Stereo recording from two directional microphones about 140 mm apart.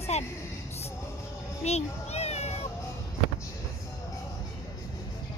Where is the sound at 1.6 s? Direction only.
50° left (ahead or behind).